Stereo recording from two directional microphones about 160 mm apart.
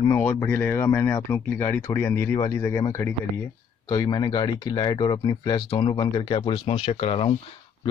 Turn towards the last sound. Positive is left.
turn(degrees=35)  # may be behind; listen again after turning